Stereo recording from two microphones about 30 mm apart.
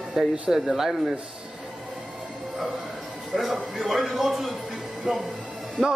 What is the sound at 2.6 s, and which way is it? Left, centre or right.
Speech, right.